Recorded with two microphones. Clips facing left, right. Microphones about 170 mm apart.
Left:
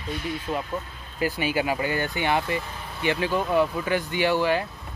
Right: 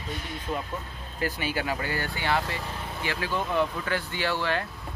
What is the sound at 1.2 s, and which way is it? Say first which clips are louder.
Speech: left 5 dB; 15° left (ahead or behind).